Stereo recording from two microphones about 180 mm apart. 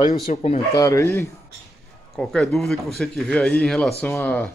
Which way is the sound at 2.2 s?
5° left (ahead or behind).